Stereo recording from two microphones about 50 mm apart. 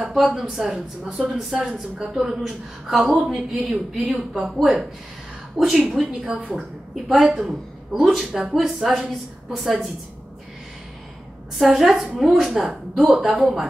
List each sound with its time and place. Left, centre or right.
0.0 s a woman's voice: centre
11.5 s a woman's voice: centre